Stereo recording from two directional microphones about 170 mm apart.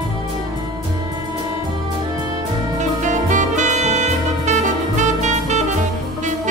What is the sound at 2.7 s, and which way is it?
Saxophone, 45° right (ahead or behind).